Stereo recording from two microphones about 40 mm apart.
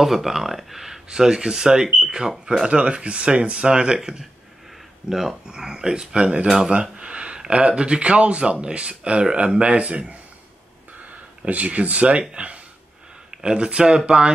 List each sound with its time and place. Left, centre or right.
0.0 s speech: centre
1.0 s speech: centre
11.4 s speech: right